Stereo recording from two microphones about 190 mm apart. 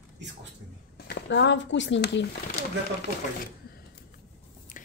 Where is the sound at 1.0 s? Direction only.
60° left (ahead or behind).